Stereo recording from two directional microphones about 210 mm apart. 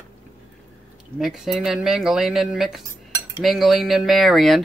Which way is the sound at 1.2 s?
Centre (ahead or behind).